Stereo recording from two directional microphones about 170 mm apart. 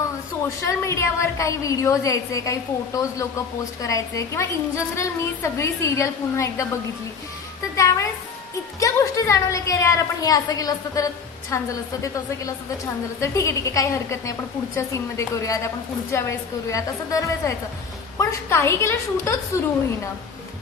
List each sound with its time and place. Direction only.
0.7 s a woman's voice: 15° left (ahead or behind)
7.7 s music: 20° left (ahead or behind)
8.7 s a woman's voice: 20° left (ahead or behind)